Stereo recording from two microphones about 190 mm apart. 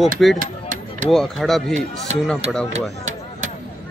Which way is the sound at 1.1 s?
Centre (ahead or behind).